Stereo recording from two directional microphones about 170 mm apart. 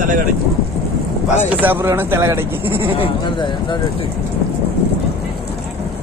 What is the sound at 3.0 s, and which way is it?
Speech, 30° left (ahead or behind).